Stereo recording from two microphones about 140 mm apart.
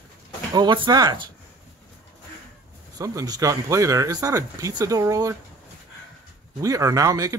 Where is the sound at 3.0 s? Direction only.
25° right (ahead or behind).